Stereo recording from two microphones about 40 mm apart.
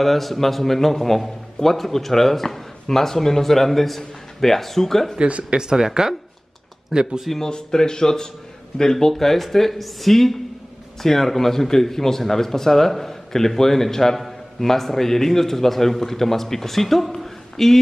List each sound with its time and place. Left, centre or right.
0.0 s a man's voice: centre
5.2 s speech: right
7.4 s speech: centre